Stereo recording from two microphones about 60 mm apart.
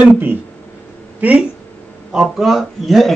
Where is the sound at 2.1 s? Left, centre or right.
Centre.